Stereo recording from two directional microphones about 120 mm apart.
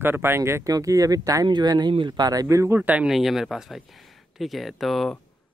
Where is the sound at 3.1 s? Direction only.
Centre (ahead or behind).